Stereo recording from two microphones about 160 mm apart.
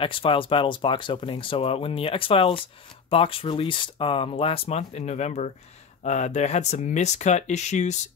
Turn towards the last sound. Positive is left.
turn(degrees=45)  # may be behind; listen again after turning